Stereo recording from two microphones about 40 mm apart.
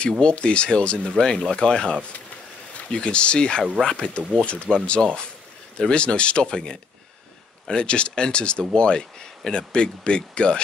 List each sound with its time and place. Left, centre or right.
0.2 s speech: left